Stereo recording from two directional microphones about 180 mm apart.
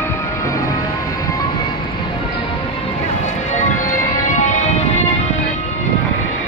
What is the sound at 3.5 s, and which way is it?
Music, 45° left (ahead or behind).